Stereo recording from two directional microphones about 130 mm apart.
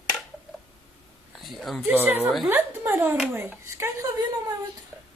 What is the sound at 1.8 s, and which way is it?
A woman's voice, 15° right (ahead or behind).